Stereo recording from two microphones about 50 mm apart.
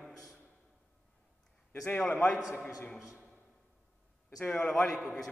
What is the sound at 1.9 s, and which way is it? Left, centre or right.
A man's voice, left.